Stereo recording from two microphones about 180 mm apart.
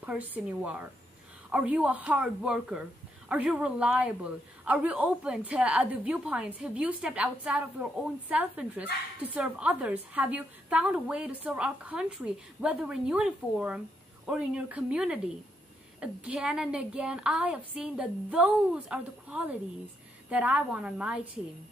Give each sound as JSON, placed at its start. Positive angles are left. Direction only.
{"t": 0.0, "sound": "a woman's voice", "side_deg": -10}